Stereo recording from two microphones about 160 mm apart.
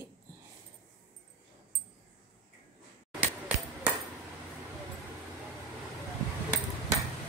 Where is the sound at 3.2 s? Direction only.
10° right (ahead or behind).